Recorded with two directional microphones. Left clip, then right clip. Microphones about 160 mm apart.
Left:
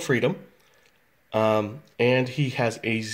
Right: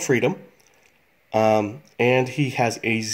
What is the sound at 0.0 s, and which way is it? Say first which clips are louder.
Speech: right 3 dB; 30° right (ahead or behind).